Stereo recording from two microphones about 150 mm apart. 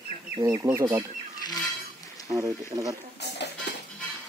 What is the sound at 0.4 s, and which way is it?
Speech, 25° right (ahead or behind).